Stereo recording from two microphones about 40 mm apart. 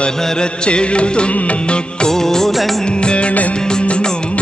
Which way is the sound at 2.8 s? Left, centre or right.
Left.